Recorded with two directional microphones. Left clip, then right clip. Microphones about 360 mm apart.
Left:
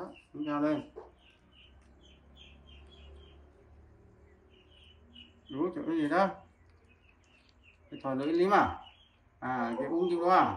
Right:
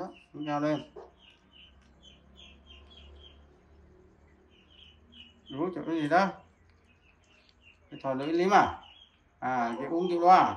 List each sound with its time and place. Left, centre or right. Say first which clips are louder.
0.5 s speech: right 2 dB; centre
5.5 s speech: right 1 dB; centre
8.0 s speech: right 1 dB; centre